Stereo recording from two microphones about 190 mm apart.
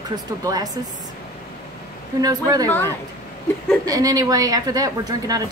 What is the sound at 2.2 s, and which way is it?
Speech, 20° right (ahead or behind).